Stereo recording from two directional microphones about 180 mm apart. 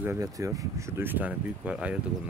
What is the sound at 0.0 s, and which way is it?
Speech, 15° right (ahead or behind).